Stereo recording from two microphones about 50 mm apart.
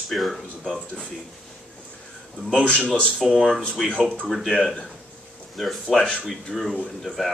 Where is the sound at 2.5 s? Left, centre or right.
Centre.